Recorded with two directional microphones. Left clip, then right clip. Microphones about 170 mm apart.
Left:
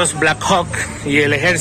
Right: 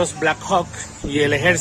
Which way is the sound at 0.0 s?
5° right (ahead or behind).